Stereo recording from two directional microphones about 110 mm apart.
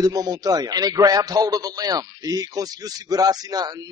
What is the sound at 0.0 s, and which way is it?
A man's voice, 35° right (ahead or behind).